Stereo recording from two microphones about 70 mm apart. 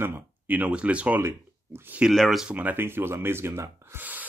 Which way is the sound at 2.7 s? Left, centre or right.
Right.